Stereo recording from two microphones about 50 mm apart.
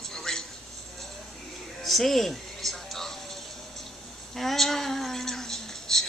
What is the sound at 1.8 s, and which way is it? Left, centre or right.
Music, centre.